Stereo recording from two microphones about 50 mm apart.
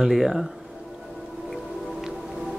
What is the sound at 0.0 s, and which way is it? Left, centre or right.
Speech, centre.